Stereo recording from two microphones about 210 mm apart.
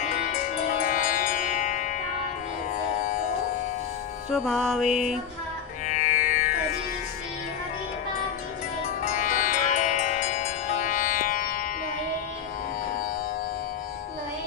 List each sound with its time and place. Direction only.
0.1 s music: 35° left (ahead or behind)
4.3 s music: centre (ahead or behind)
5.9 s music: 35° left (ahead or behind)
8.8 s music: 40° left (ahead or behind)